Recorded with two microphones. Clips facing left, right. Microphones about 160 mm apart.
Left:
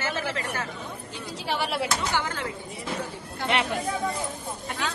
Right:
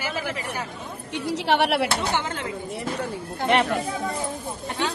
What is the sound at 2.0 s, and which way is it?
Speech, 25° right (ahead or behind).